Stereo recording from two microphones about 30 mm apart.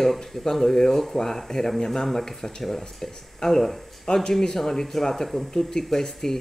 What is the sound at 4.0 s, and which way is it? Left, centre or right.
Speech, left.